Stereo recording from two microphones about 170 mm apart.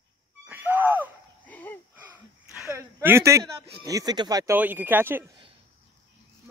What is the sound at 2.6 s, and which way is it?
Speech, 15° right (ahead or behind).